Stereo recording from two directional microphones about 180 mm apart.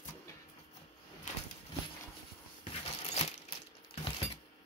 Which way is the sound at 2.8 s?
35° left (ahead or behind).